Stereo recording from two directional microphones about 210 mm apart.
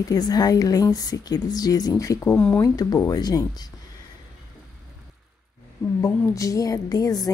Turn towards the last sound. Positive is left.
turn(degrees=20)  # may be behind; listen again after turning